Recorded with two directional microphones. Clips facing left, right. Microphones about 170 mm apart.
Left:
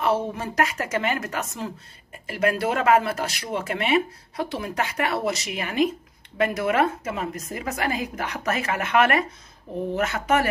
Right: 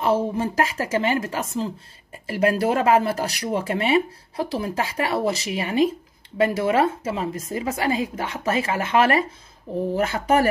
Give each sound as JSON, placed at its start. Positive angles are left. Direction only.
{"t": 0.0, "sound": "a woman's voice", "side_deg": -30}